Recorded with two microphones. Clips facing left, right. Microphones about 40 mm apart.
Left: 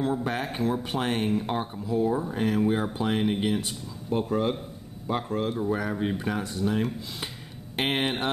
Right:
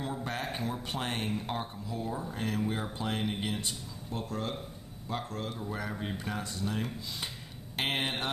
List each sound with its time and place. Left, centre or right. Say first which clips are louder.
0.0 s speech: left 8 dB; centre
4.1 s speech: left 10 dB; left